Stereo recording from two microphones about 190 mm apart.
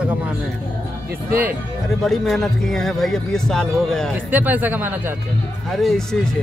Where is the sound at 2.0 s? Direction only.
Centre (ahead or behind).